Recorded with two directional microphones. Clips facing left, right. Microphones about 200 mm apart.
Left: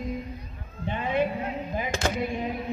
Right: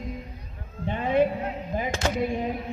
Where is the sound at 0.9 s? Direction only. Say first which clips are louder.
Right 4 dB; 40° right (ahead or behind).